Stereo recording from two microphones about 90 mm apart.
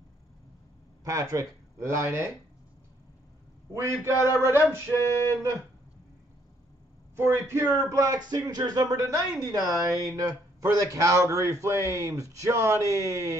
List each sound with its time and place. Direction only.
1.0 s speech: 40° right (ahead or behind)
3.7 s speech: 30° right (ahead or behind)
7.2 s speech: 25° right (ahead or behind)